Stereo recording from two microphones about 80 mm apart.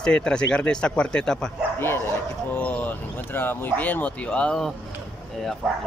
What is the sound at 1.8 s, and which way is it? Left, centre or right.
Speech, left.